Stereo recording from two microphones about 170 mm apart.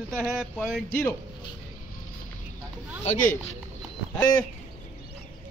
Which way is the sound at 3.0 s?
55° left (ahead or behind).